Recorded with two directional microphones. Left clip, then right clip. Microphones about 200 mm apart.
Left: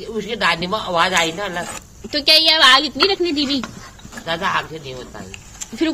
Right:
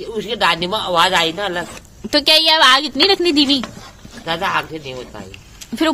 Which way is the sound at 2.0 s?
45° right (ahead or behind).